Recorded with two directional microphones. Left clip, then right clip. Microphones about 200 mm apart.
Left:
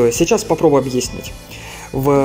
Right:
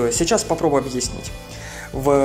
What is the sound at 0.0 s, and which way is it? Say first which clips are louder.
Speech: left 5 dB; centre (ahead or behind).